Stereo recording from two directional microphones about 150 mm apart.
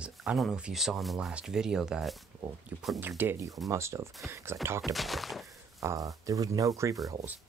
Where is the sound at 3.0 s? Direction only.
15° right (ahead or behind).